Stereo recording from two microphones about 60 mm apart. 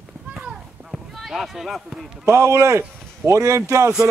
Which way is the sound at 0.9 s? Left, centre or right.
Centre.